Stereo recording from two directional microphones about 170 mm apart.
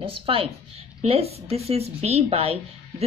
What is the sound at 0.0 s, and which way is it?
Speech, 30° right (ahead or behind).